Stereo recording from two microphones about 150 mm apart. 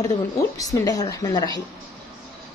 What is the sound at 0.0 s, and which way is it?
A woman's voice, 20° left (ahead or behind).